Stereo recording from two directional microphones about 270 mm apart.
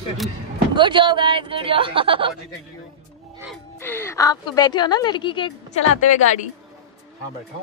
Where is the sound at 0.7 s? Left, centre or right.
Centre.